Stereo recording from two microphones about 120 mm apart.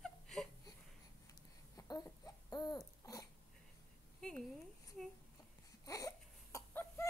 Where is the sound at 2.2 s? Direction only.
35° left (ahead or behind).